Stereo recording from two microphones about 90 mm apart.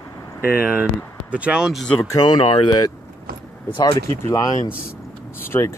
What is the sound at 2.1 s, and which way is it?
Speech, 50° left (ahead or behind).